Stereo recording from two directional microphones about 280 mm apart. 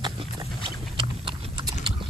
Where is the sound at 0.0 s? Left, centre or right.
Centre.